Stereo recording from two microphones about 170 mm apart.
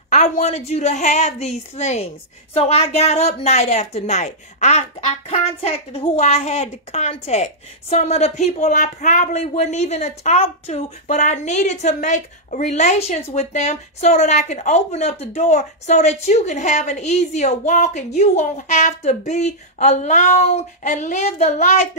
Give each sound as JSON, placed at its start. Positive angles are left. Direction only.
{"t": 0.1, "sound": "a woman's voice", "side_deg": 40}